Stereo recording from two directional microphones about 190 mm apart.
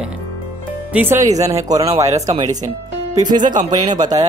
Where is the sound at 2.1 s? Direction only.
35° right (ahead or behind).